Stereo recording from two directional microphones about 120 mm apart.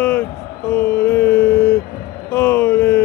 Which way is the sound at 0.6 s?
15° left (ahead or behind).